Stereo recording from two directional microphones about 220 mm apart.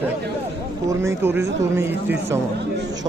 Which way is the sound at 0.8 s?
10° right (ahead or behind).